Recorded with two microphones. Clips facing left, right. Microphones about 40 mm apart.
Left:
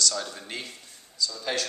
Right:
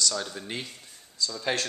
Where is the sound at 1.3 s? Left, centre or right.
Centre.